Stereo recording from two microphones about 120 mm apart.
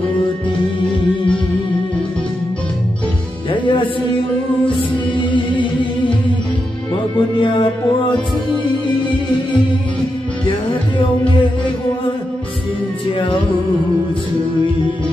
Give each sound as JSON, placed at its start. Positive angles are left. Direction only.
{"t": 3.5, "sound": "music", "side_deg": 45}
{"t": 5.3, "sound": "music", "side_deg": 40}
{"t": 7.2, "sound": "music", "side_deg": 45}